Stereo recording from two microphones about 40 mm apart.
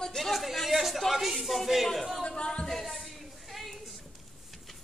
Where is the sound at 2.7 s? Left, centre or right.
Centre.